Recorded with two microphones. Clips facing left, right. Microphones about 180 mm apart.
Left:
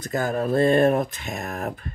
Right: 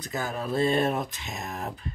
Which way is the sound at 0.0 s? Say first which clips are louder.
Left 7 dB; 50° left (ahead or behind).